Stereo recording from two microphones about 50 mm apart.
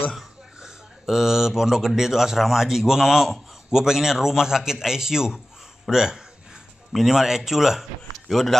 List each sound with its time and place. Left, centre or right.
0.6 s a man's voice: centre
5.9 s a sound: centre
6.9 s a man's voice: centre